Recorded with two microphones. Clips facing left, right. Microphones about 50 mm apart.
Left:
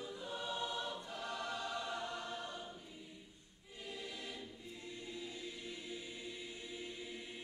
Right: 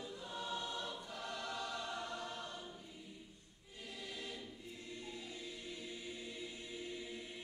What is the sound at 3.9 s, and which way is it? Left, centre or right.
Choir, left.